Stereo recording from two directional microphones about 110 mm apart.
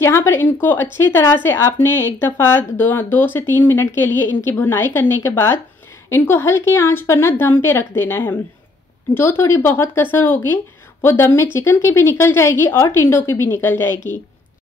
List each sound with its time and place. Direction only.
0.0 s a woman's voice: 25° left (ahead or behind)